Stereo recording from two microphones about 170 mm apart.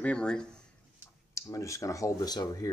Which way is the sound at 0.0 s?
5° left (ahead or behind).